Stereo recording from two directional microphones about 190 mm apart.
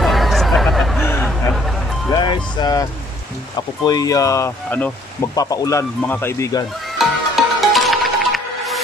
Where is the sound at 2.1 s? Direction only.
25° left (ahead or behind).